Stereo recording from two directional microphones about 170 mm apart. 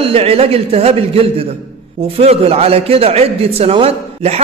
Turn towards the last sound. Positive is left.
turn(degrees=-35)  # may be behind; listen again after turning